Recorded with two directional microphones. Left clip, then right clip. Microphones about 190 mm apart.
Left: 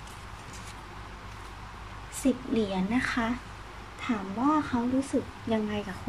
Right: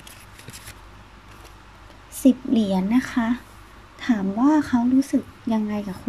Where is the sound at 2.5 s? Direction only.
30° right (ahead or behind).